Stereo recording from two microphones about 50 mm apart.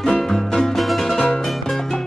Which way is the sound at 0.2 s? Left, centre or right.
Centre.